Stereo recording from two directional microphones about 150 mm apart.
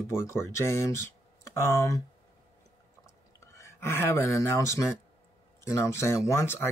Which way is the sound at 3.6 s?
15° left (ahead or behind).